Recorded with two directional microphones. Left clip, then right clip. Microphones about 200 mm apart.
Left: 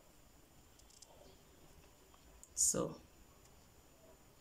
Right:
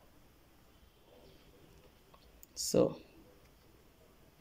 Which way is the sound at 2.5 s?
25° right (ahead or behind).